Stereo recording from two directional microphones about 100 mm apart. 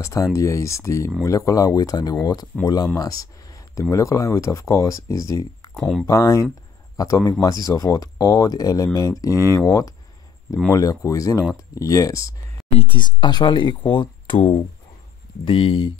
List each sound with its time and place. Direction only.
0.0 s speech: 30° left (ahead or behind)
3.0 s a sound: 35° left (ahead or behind)
3.9 s speech: 30° left (ahead or behind)
5.8 s speech: 5° left (ahead or behind)
6.0 s speech: 30° left (ahead or behind)
12.7 s speech: 55° left (ahead or behind)